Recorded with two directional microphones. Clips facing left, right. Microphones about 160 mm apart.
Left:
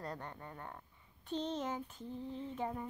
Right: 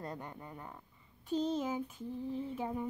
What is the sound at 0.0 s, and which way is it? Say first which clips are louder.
A woman's voice: right 1 dB; 15° right (ahead or behind).